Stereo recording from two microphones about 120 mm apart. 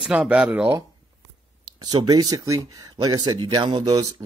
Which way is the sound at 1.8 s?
35° right (ahead or behind).